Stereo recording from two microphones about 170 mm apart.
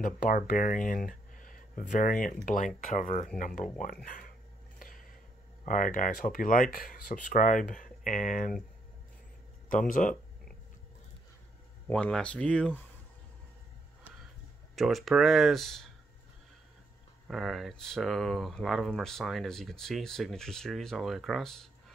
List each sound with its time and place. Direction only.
0.0 s speech: 55° left (ahead or behind)
5.7 s speech: 55° left (ahead or behind)
9.7 s speech: 50° left (ahead or behind)
11.9 s speech: 5° left (ahead or behind)
14.8 s speech: centre (ahead or behind)
17.3 s speech: centre (ahead or behind)